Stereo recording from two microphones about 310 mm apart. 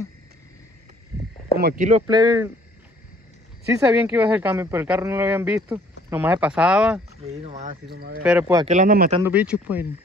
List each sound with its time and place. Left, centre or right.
1.6 s speech: right; by 2.5 s centre
3.8 s speech: centre
7.2 s speech: centre
8.2 s speech: centre
8.6 s speech: right
9.2 s speech: centre